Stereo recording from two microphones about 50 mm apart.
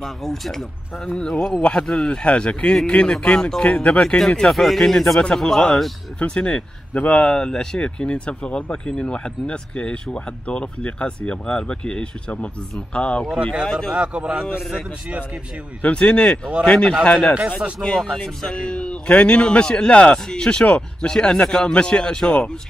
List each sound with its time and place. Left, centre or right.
0.0 s a man's voice: centre
3.6 s a man's voice: left
4.2 s speech: centre
6.1 s a man's voice: left
13.3 s speech: centre
13.7 s speech: centre
13.9 s a man's voice: centre
14.4 s speech: centre
15.8 s a man's voice: left